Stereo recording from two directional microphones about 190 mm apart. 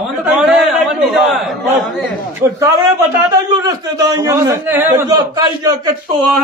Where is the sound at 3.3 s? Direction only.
20° right (ahead or behind).